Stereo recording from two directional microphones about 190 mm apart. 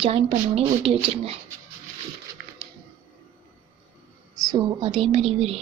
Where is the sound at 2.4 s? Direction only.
55° right (ahead or behind).